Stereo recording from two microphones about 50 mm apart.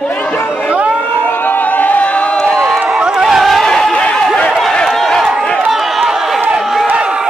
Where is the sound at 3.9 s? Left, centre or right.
Left.